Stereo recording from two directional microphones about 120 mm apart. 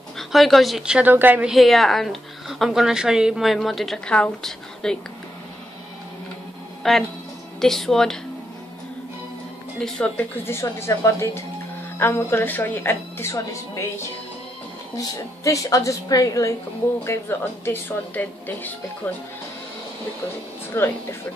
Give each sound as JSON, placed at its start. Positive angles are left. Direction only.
{"t": 0.2, "sound": "a woman's voice", "side_deg": 0}
{"t": 1.5, "sound": "a woman's voice", "side_deg": 0}
{"t": 6.8, "sound": "a woman's voice", "side_deg": 0}
{"t": 9.8, "sound": "a woman's voice", "side_deg": 5}
{"t": 20.7, "sound": "a woman's voice", "side_deg": 20}